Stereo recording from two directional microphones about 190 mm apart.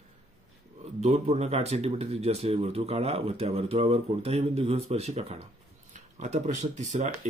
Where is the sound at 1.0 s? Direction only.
35° right (ahead or behind).